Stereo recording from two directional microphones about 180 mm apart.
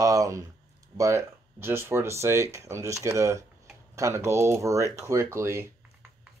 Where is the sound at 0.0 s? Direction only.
20° right (ahead or behind).